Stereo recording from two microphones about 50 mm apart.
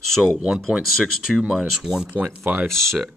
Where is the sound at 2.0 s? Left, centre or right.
Right.